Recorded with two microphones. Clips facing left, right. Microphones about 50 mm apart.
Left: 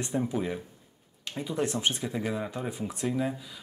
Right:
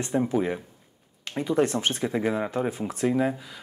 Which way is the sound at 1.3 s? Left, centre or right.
Right.